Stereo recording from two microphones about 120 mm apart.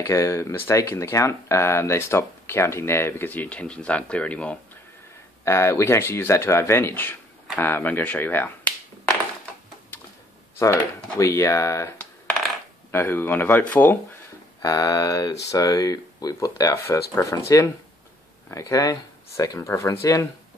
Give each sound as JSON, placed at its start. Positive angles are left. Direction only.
{"t": 0.0, "sound": "speech", "side_deg": 25}
{"t": 5.4, "sound": "speech", "side_deg": 25}
{"t": 11.1, "sound": "speech", "side_deg": 25}
{"t": 12.0, "sound": "coin", "side_deg": 5}
{"t": 12.9, "sound": "speech", "side_deg": 20}
{"t": 14.6, "sound": "speech", "side_deg": 30}